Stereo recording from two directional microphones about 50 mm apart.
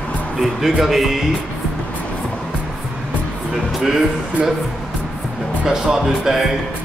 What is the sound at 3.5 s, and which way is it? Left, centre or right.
Speech, centre.